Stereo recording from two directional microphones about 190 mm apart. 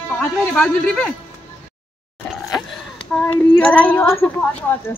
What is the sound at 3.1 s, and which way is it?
Speech, 5° left (ahead or behind).